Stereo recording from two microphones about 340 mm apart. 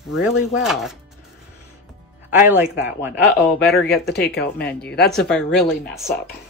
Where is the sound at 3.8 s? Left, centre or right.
Left.